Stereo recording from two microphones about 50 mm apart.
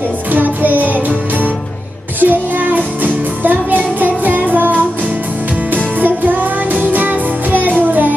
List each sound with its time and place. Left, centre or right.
0.3 s music: right
5.9 s music: right